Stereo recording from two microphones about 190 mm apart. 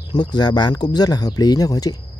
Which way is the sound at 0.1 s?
20° left (ahead or behind).